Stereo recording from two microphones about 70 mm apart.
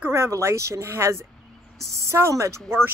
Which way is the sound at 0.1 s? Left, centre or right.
Right.